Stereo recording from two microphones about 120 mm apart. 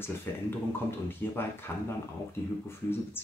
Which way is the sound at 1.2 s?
15° left (ahead or behind).